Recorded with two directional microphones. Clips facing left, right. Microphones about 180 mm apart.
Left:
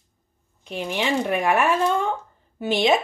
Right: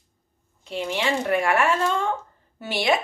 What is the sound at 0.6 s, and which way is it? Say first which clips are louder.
Speech: even; 20° left (ahead or behind).